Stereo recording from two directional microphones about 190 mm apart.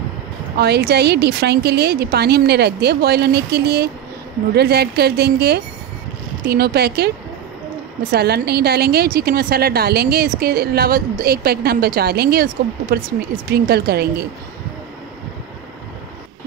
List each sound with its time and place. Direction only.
0.6 s a woman's voice: 60° right (ahead or behind)
8.1 s a woman's voice: 55° right (ahead or behind)
13.5 s a woman's voice: 55° right (ahead or behind)